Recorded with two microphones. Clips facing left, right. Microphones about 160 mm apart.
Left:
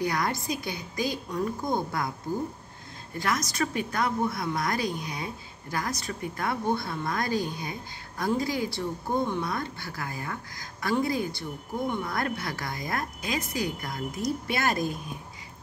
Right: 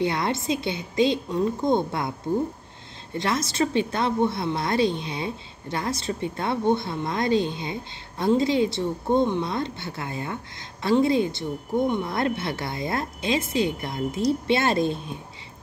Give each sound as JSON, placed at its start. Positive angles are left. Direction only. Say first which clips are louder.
{"t": 0.0, "sound": "a woman's voice", "louder": "right 4 dB", "side_deg": -25}